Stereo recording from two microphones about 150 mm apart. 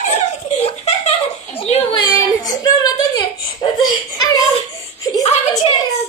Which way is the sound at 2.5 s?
25° left (ahead or behind).